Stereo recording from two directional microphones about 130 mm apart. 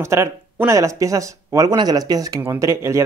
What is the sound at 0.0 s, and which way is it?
Speech, 20° right (ahead or behind).